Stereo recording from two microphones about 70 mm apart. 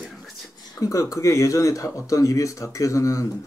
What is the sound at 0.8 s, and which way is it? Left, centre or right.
Speech, left.